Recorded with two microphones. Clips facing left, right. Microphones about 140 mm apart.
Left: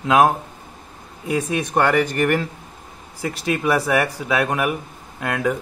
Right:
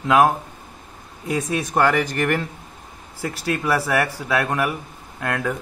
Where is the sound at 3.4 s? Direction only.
15° left (ahead or behind).